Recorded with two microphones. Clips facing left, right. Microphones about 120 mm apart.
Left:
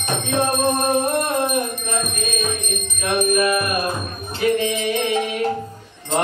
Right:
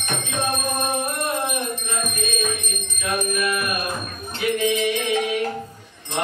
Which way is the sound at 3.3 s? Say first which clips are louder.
Left 5 dB; 40° left (ahead or behind).